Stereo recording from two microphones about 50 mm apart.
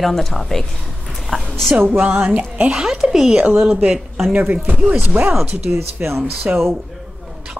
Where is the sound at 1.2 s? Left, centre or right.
Centre.